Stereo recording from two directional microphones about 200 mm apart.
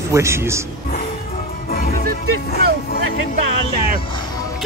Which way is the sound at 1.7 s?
45° left (ahead or behind).